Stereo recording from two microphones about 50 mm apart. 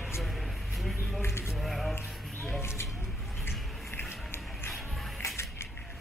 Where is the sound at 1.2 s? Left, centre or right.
Left.